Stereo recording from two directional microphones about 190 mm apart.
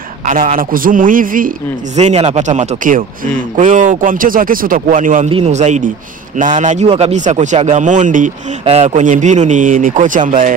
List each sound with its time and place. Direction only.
0.2 s speech: 45° right (ahead or behind)
2.0 s a man's voice: 35° right (ahead or behind)